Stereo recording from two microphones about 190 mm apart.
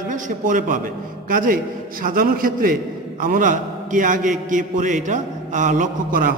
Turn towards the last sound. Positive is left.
turn(degrees=-45)  # may be behind; listen again after turning